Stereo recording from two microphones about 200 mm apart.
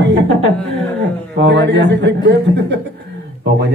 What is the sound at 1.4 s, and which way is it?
A man's voice, 60° right (ahead or behind).